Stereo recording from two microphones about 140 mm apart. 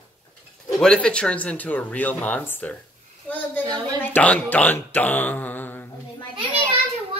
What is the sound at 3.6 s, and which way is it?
Speech, 30° right (ahead or behind).